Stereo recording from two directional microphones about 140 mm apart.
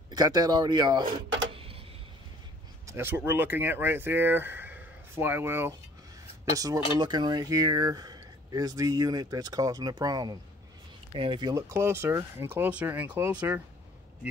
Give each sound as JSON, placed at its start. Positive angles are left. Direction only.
{"t": 0.1, "sound": "speech", "side_deg": -25}
{"t": 1.5, "sound": "tick-tock", "side_deg": -40}
{"t": 2.9, "sound": "speech", "side_deg": -15}